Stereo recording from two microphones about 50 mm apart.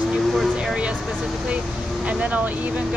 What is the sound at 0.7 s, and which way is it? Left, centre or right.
Speech, centre.